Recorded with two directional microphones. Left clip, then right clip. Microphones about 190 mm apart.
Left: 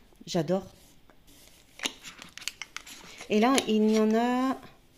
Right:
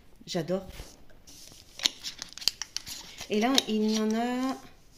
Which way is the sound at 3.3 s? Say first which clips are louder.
Left 2 dB; 60° left (ahead or behind).